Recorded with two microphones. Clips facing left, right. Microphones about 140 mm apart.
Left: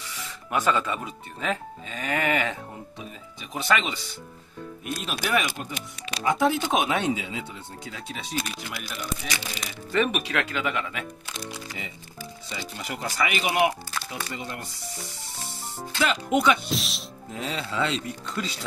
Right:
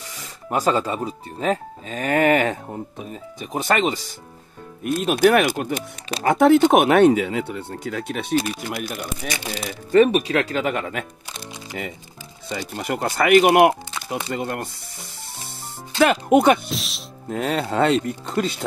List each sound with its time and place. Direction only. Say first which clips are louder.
0.0 s speech: right 1 dB; 40° right (ahead or behind)
9.6 s speech: right 10 dB; 40° right (ahead or behind); by 14.7 s 60° right (ahead or behind)
16.0 s speech: right 8 dB; 55° right (ahead or behind)
16.6 s speech: even; centre (ahead or behind)
17.3 s speech: right 9 dB; 60° right (ahead or behind)